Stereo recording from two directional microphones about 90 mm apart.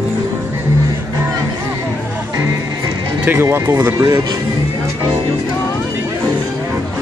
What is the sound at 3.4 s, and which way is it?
Speech, 25° right (ahead or behind).